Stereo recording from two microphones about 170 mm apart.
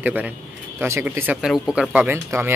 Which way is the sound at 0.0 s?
10° right (ahead or behind).